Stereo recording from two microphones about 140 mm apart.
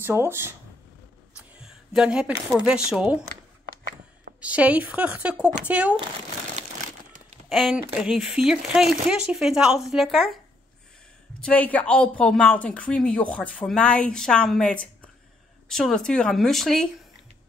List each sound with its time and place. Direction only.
0.0 s speech: 15° right (ahead or behind)
1.3 s speech: 5° right (ahead or behind)
4.4 s speech: 10° right (ahead or behind)
6.5 s a sound: 60° right (ahead or behind)
7.4 s speech: centre (ahead or behind)
11.4 s speech: 10° left (ahead or behind)